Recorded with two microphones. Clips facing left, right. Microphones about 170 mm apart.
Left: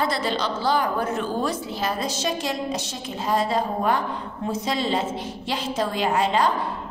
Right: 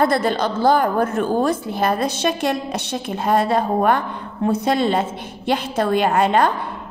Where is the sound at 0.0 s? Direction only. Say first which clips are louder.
Right 6 dB; 50° right (ahead or behind).